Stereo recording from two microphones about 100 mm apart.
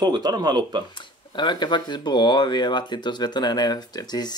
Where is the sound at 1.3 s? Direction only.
50° left (ahead or behind).